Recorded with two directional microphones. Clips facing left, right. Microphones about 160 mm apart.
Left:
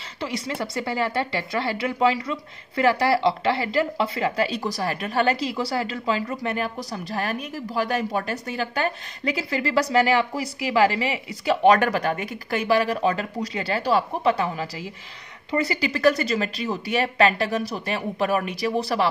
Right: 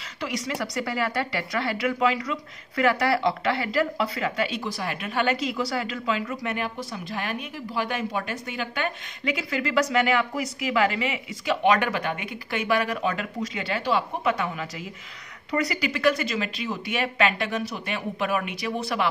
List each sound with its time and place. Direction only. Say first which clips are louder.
0.2 s speech: left 1 dB; 30° left (ahead or behind)